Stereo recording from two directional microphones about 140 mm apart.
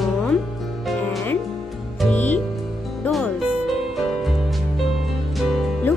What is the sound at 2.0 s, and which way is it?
Music, 10° left (ahead or behind).